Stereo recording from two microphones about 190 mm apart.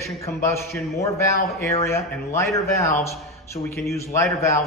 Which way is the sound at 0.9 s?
15° left (ahead or behind).